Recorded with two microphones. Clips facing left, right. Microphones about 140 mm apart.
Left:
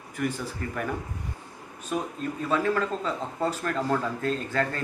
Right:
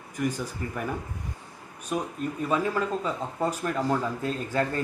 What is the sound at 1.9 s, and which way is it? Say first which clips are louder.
Speech: even; 5° right (ahead or behind).